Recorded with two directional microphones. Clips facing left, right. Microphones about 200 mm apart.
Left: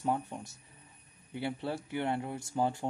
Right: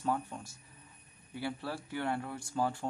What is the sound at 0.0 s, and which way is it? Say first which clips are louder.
Speech: left 1 dB; 20° left (ahead or behind).